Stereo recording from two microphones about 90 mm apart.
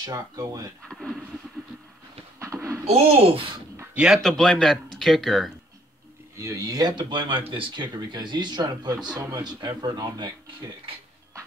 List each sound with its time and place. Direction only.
0.0 s speech: 40° right (ahead or behind)
0.8 s speech: centre (ahead or behind)
2.3 s a sound: 35° right (ahead or behind)
3.1 s speech: 90° right
3.9 s a man's voice: 10° right (ahead or behind)
4.2 s speech: 5° left (ahead or behind)
6.3 s speech: 35° right (ahead or behind)